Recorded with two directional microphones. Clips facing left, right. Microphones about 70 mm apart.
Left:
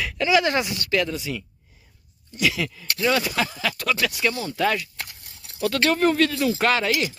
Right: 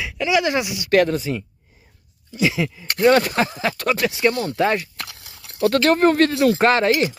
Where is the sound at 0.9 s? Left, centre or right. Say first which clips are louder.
Right 10 dB; right.